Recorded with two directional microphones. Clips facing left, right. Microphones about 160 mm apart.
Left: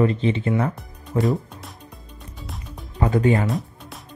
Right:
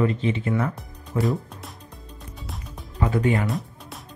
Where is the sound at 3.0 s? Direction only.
35° left (ahead or behind).